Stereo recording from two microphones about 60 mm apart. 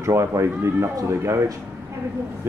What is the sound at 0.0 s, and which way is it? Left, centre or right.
Speech, right.